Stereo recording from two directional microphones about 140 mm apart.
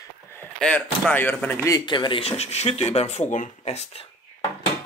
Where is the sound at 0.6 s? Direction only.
5° left (ahead or behind).